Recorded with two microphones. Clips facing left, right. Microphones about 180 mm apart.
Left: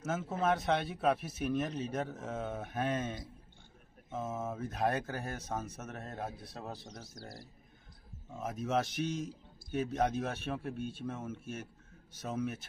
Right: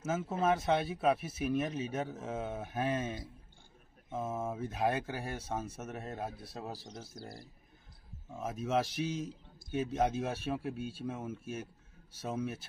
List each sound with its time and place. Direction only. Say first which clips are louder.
0.0 s speech: right 1 dB; 5° right (ahead or behind)
8.4 s speech: right 1 dB; 5° right (ahead or behind)
10.6 s speech: even; 30° right (ahead or behind)
11.1 s speech: right 1 dB; 10° right (ahead or behind)